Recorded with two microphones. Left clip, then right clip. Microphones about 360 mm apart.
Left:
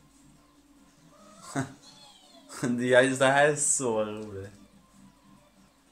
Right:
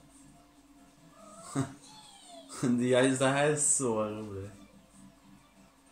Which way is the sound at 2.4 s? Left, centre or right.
Left.